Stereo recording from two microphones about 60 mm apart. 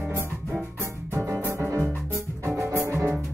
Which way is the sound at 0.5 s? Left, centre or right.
Centre.